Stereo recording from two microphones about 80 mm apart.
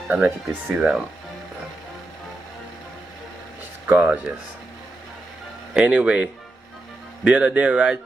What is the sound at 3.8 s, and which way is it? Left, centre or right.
Speech, centre.